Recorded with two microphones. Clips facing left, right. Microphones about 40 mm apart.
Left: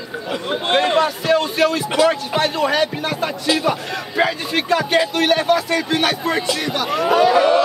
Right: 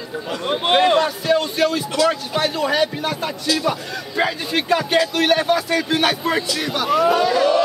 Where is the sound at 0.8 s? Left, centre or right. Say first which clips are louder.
Even; centre.